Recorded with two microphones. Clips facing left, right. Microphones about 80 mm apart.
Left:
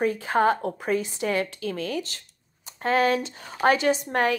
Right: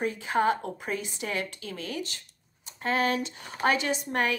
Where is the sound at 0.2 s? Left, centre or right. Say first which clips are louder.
Left 4 dB; left.